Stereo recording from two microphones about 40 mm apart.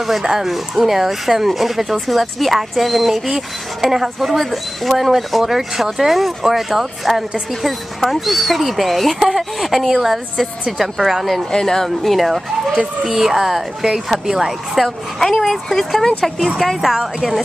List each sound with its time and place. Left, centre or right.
0.2 s speech: centre
11.5 s speech: centre
14.8 s speech: centre
16.4 s speech: centre